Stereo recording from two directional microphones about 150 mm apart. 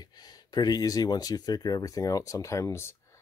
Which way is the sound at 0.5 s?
25° left (ahead or behind).